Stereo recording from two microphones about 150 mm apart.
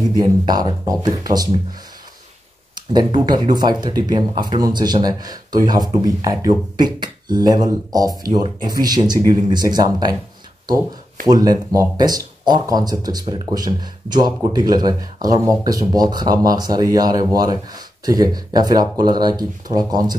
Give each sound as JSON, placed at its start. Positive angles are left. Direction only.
{"t": 0.2, "sound": "speech", "side_deg": -25}
{"t": 2.7, "sound": "speech", "side_deg": -30}
{"t": 11.2, "sound": "speech", "side_deg": -25}